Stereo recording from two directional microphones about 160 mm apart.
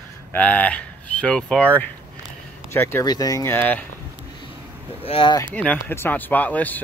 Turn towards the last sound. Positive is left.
turn(degrees=10)  # may be behind; listen again after turning